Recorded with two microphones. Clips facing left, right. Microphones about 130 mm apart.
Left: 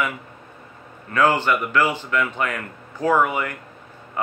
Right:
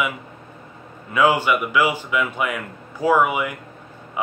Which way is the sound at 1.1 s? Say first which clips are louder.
Right 1 dB; 10° right (ahead or behind).